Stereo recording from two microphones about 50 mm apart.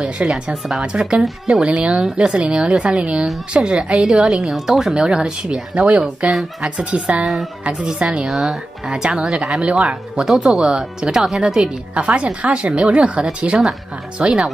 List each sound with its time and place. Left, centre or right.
0.2 s speech: right
8.3 s speech: centre
10.3 s speech: centre
10.6 s speech: centre
14.2 s speech: centre